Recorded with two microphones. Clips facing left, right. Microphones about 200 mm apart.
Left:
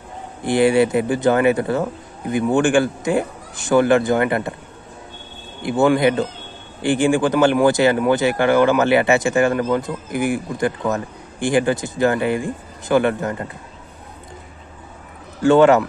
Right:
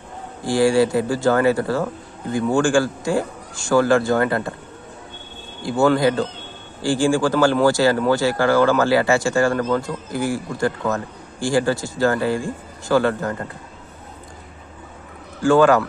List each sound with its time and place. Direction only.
0.4 s speech: 20° left (ahead or behind)
5.6 s speech: 20° left (ahead or behind)
15.4 s speech: 25° left (ahead or behind)